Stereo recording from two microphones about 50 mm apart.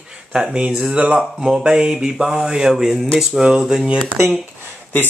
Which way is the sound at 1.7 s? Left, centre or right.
Centre.